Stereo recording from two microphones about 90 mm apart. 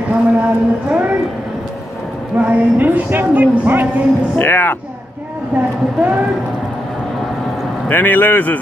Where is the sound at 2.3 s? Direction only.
20° right (ahead or behind).